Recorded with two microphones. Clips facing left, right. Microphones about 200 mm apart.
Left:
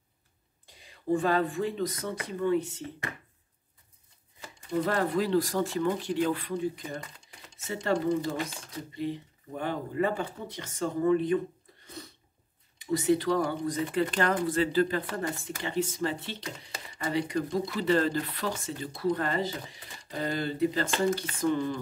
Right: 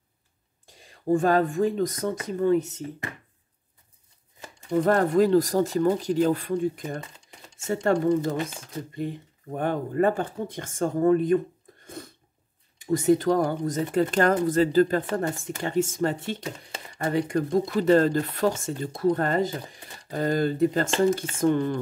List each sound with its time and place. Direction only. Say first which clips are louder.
0.7 s speech: right 5 dB; 45° right (ahead or behind)
4.8 s speech: right 8 dB; 45° right (ahead or behind)
11.8 s sneeze: right 5 dB; 50° right (ahead or behind)
12.7 s speech: right 5 dB; 45° right (ahead or behind)